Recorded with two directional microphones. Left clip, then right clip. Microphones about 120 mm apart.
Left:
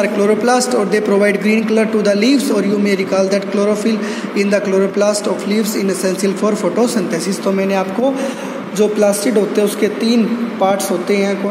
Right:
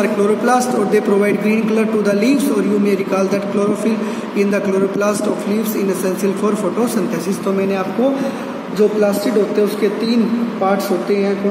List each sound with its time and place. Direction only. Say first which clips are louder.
0.0 s a man's voice: left 2 dB; 35° left (ahead or behind)
5.0 s a man's voice: left 2 dB; 35° left (ahead or behind)
8.7 s a woman's voice: left 1 dB; 50° left (ahead or behind)